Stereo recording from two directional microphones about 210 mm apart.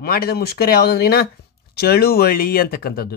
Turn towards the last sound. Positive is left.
turn(degrees=45)  # may be behind; listen again after turning